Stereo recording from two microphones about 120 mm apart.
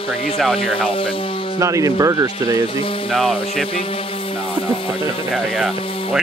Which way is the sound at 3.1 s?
5° left (ahead or behind).